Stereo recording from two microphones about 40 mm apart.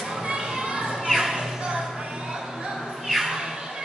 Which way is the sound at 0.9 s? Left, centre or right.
Centre.